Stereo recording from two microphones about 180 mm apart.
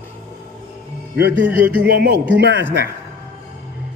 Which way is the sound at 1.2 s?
80° right.